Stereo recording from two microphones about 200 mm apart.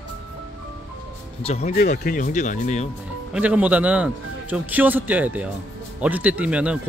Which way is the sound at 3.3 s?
5° right (ahead or behind).